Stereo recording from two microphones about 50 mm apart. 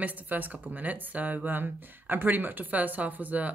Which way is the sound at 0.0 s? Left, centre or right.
Right.